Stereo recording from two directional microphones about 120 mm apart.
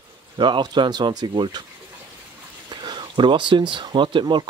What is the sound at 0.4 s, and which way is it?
Speech, 40° right (ahead or behind).